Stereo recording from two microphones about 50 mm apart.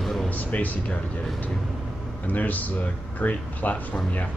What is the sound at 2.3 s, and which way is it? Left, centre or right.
Speech, left.